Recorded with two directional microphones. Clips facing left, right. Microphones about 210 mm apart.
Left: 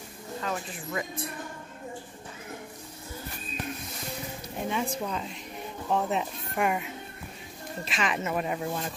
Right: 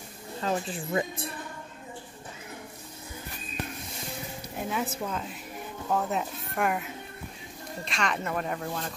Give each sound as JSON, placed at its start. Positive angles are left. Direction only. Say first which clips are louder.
{"t": 0.4, "sound": "speech", "louder": "right 5 dB", "side_deg": -30}
{"t": 4.6, "sound": "speech", "louder": "left 1 dB", "side_deg": -5}